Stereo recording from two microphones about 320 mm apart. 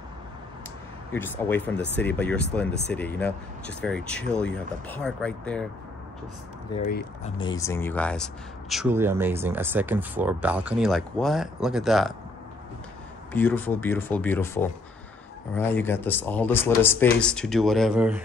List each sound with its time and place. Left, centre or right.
1.1 s speech: centre
6.7 s speech: left
7.3 s speech: centre
13.3 s speech: centre